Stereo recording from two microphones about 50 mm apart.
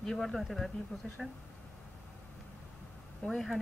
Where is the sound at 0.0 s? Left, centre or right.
Centre.